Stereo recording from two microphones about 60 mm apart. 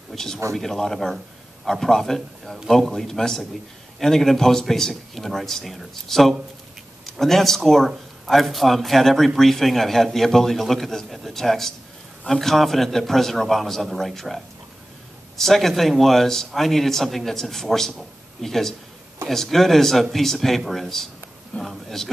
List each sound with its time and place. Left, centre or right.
0.1 s a man's voice: centre